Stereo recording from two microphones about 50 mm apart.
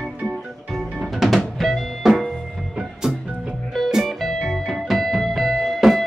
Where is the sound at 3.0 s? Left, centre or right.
Centre.